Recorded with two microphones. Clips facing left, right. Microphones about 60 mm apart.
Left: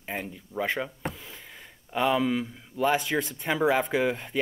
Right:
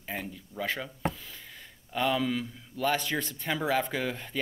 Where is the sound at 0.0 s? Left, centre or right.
Centre.